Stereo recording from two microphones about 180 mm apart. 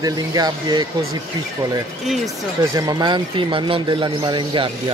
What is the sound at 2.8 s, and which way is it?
Speech, 20° right (ahead or behind).